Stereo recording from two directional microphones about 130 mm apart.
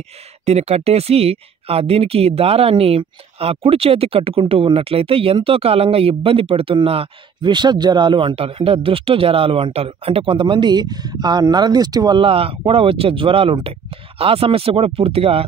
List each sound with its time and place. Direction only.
0.5 s speech: 55° right (ahead or behind); by 12.2 s 30° right (ahead or behind)
12.2 s speech: 45° right (ahead or behind)